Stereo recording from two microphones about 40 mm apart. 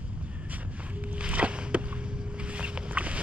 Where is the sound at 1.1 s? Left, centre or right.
Right.